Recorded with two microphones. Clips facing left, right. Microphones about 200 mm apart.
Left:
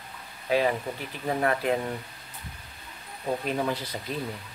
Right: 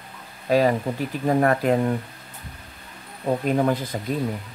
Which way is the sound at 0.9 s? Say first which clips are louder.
Right 8 dB; 45° right (ahead or behind).